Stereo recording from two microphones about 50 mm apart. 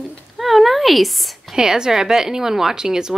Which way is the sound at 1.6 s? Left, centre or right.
Centre.